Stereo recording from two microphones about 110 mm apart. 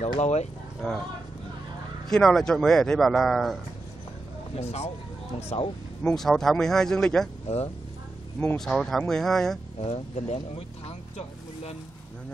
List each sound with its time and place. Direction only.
0.0 s speech: 90° left
2.0 s a man's voice: 5° left (ahead or behind)
4.6 s speech: 70° left (ahead or behind)
5.5 s speech: 90° left
6.0 s a man's voice: 5° left (ahead or behind)
7.4 s speech: 65° left (ahead or behind)
8.5 s a man's voice: 5° left (ahead or behind)
9.8 s speech: 75° left (ahead or behind)